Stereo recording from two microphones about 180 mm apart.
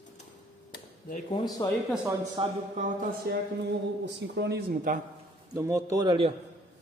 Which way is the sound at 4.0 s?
70° right (ahead or behind).